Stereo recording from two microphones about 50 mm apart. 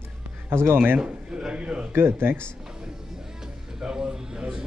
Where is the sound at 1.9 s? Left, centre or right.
Right.